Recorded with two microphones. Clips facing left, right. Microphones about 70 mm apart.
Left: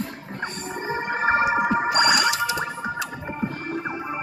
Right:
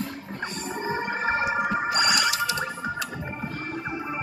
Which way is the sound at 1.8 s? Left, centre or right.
Left.